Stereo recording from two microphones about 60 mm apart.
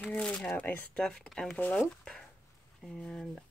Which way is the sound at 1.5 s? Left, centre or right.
Left.